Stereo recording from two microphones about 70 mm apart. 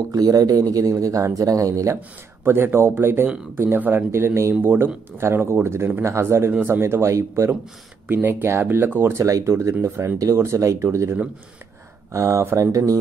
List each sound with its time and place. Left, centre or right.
0.1 s speech: right
2.4 s speech: right
4.6 s speech: right
8.1 s speech: right
9.2 s speech: right